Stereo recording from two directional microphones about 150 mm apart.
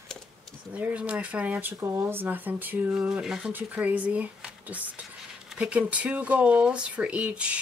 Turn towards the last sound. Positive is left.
turn(degrees=-10)  # may be behind; listen again after turning